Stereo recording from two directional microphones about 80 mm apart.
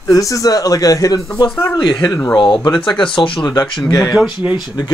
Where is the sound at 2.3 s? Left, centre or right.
Left.